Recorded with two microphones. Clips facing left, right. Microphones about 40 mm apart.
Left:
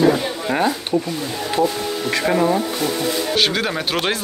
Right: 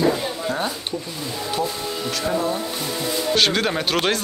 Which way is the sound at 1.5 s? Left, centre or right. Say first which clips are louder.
Left 6 dB; left.